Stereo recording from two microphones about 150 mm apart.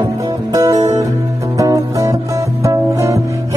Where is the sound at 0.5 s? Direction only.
25° right (ahead or behind).